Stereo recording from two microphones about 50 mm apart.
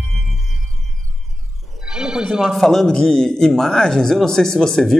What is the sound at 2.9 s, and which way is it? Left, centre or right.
A man's voice, centre.